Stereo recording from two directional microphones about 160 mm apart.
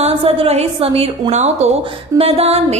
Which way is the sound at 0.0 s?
40° right (ahead or behind).